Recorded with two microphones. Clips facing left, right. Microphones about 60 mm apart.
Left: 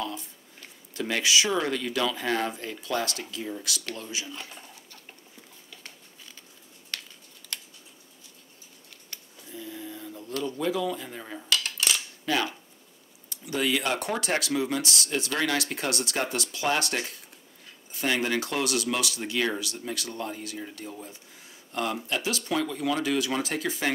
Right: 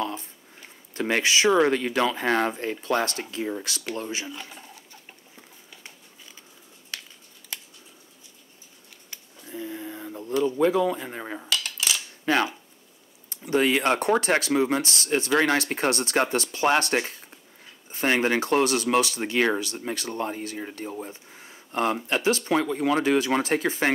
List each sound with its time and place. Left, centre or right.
0.0 s a sound: right
0.9 s speech: right
4.3 s speech: centre
7.5 s scissors: centre
9.5 s a sound: right
13.3 s speech: right